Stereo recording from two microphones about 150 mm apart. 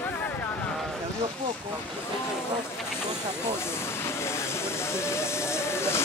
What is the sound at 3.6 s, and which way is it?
Speech, 15° left (ahead or behind).